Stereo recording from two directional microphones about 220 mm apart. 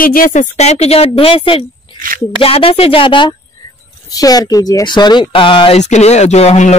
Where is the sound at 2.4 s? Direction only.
25° left (ahead or behind).